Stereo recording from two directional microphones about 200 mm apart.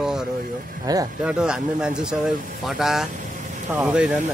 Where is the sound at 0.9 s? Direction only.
20° right (ahead or behind).